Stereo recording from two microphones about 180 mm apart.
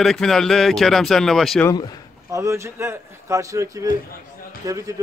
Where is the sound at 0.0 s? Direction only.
Centre (ahead or behind).